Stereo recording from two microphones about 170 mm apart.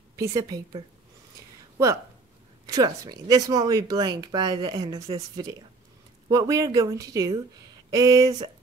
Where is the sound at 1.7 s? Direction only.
20° right (ahead or behind).